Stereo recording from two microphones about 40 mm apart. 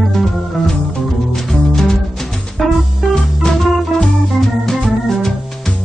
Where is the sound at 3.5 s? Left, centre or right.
Left.